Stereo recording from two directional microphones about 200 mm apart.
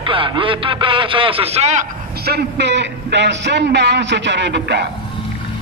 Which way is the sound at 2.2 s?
55° right (ahead or behind).